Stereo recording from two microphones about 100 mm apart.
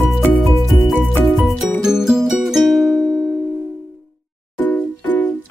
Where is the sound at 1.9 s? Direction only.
5° right (ahead or behind).